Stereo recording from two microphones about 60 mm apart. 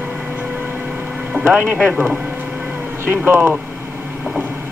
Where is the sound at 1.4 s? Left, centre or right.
Right.